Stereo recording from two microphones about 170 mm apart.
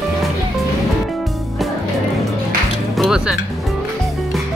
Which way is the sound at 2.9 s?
Centre (ahead or behind).